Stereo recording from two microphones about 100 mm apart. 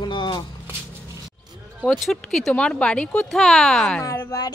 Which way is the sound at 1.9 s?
5° left (ahead or behind).